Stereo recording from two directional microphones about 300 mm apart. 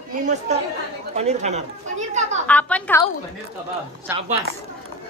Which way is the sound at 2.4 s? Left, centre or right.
Centre.